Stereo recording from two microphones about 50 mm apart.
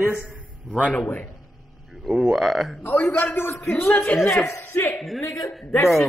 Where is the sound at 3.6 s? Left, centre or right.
Left.